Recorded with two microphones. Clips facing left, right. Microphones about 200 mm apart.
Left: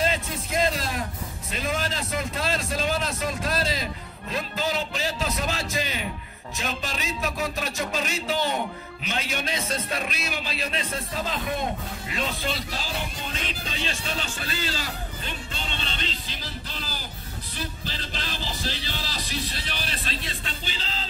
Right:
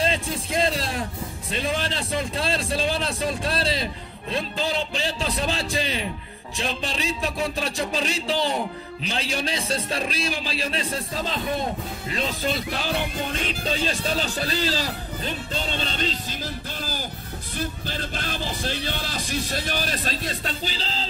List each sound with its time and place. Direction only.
0.0 s music: 30° right (ahead or behind)
1.5 s a man's voice: 30° right (ahead or behind)
12.5 s music: 60° right (ahead or behind)
13.7 s a man's voice: 40° right (ahead or behind)
17.6 s music: 50° right (ahead or behind); by 21.1 s 35° right (ahead or behind)